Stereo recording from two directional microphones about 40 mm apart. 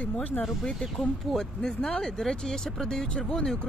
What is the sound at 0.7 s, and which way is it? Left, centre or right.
Speech, centre.